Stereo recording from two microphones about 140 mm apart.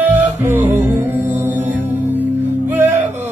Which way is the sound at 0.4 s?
15° right (ahead or behind).